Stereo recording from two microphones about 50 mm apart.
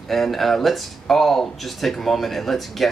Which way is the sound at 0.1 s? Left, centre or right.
Centre.